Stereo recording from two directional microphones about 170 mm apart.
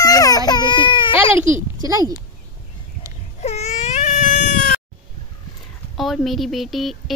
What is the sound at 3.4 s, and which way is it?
Baby cry, 40° left (ahead or behind).